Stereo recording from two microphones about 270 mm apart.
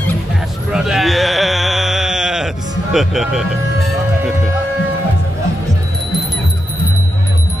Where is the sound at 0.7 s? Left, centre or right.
Centre.